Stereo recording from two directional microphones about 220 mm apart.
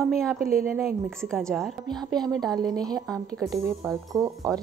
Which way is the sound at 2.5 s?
15° right (ahead or behind).